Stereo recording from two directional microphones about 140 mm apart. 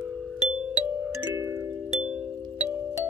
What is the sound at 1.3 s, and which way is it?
Music, 20° right (ahead or behind).